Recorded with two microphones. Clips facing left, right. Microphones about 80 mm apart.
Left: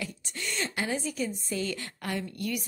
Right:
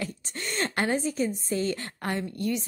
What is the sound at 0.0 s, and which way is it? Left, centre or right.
A woman's voice, right.